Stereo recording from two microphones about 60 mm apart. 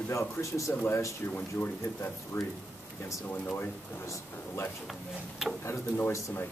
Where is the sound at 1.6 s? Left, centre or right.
Centre.